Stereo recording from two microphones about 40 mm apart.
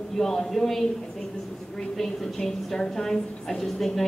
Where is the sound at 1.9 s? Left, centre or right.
Centre.